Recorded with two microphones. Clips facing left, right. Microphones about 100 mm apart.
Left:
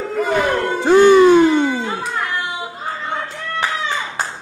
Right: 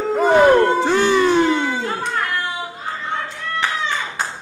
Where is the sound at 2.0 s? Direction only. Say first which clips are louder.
Right 1 dB; 5° left (ahead or behind).